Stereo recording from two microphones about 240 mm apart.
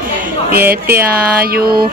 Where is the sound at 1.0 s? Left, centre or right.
Right.